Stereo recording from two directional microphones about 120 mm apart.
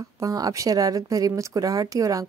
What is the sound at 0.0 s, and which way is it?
A woman's voice, 30° right (ahead or behind).